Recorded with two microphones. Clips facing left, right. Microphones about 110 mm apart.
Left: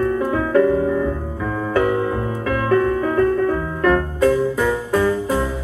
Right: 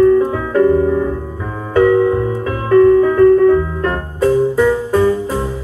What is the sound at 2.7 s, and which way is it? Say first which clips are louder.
Music: right 10 dB; 35° right (ahead or behind).